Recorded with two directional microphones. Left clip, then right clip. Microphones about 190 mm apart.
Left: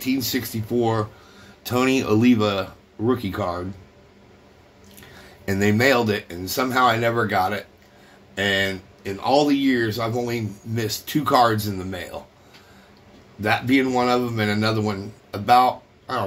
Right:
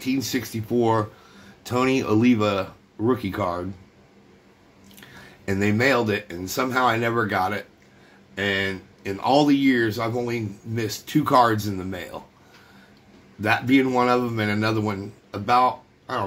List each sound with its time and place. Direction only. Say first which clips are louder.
0.0 s speech: left 2 dB; 5° right (ahead or behind)
1.6 s speech: left 1 dB; centre (ahead or behind)
5.4 s speech: left 2 dB; centre (ahead or behind)
9.0 s speech: even; 20° right (ahead or behind)
10.1 s speech: left 1 dB; 5° right (ahead or behind)
13.4 s speech: even; 15° right (ahead or behind)